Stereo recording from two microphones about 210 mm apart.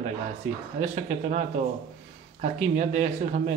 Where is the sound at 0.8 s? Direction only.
35° right (ahead or behind).